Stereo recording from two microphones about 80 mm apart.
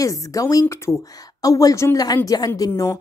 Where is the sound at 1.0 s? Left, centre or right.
Left.